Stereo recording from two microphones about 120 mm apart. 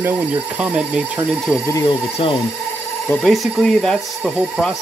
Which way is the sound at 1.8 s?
45° left (ahead or behind).